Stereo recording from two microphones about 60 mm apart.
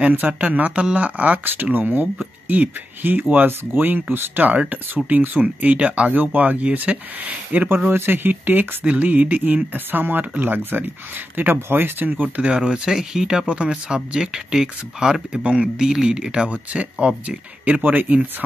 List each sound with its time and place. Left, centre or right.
0.0 s speech: right
12.1 s speech: right
12.4 s speech: centre